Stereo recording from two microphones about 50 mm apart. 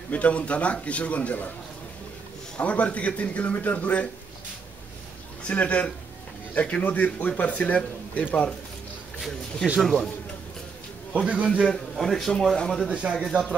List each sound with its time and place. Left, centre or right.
0.1 s speech: left
2.6 s speech: left
5.5 s a man's voice: left
9.8 s a man's voice: centre
11.2 s a man's voice: right
11.6 s a man's voice: centre
12.8 s a man's voice: right